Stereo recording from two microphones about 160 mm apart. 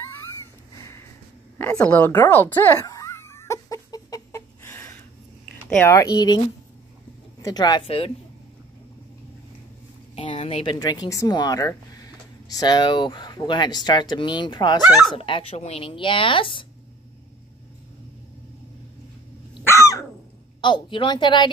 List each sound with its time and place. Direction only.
1.6 s speech: 15° left (ahead or behind)
2.2 s a sound: 10° left (ahead or behind)
5.8 s speech: 15° left (ahead or behind)
7.4 s speech: 25° left (ahead or behind)
7.8 s speech: 35° left (ahead or behind)
10.1 s speech: 35° left (ahead or behind)
14.8 s speech: 5° right (ahead or behind)
15.1 s speech: 35° left (ahead or behind)
19.6 s dog: 20° left (ahead or behind)
20.6 s speech: 30° left (ahead or behind)